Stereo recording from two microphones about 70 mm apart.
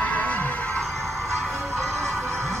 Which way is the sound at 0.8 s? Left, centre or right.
Centre.